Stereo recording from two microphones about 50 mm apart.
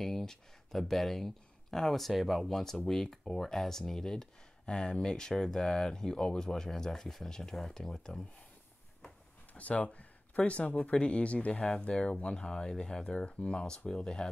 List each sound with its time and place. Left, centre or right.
0.0 s speech: centre
9.5 s speech: left; by 14.3 s centre